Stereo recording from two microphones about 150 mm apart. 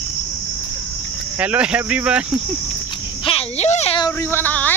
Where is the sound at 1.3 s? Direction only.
10° right (ahead or behind).